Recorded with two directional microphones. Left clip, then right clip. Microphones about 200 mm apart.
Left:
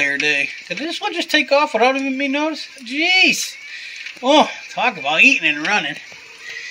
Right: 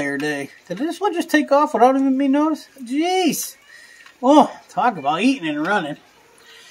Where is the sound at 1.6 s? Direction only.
20° right (ahead or behind).